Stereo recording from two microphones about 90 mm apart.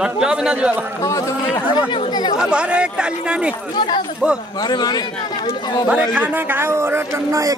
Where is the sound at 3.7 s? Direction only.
60° left (ahead or behind).